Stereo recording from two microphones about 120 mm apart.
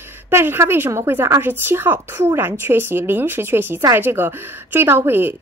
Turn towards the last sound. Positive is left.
turn(degrees=-20)  # may be behind; listen again after turning